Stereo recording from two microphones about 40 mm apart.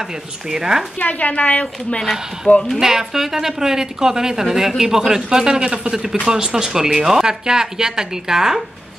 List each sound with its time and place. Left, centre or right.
0.0 s speech: centre
0.9 s speech: left
2.8 s speech: centre